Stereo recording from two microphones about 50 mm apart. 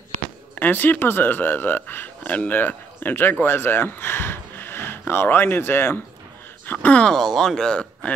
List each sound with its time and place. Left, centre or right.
0.6 s speech: left
6.9 s speech: left
7.2 s speech: centre